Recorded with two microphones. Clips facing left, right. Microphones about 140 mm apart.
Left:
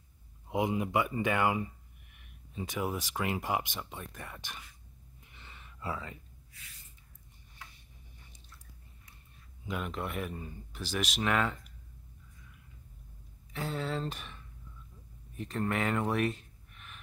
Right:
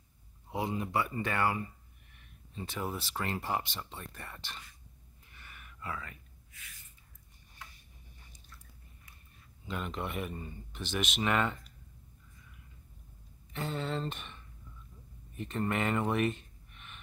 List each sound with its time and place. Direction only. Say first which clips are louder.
0.5 s speech: left 4 dB; 15° left (ahead or behind)
5.3 s a sound: even; 25° left (ahead or behind)
9.7 s speech: left 1 dB; 5° left (ahead or behind)
13.5 s speech: even; centre (ahead or behind)